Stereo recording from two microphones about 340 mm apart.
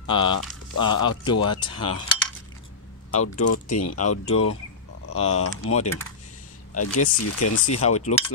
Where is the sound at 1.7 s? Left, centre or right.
Left.